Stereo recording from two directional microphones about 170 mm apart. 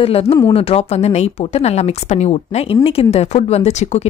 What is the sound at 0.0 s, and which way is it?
Speech, 35° left (ahead or behind).